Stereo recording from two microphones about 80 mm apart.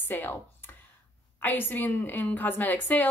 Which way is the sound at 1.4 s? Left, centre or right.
Left.